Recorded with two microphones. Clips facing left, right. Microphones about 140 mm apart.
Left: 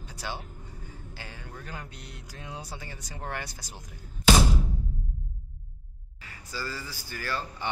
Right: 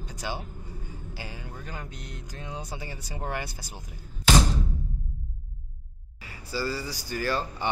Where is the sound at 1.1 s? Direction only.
10° right (ahead or behind).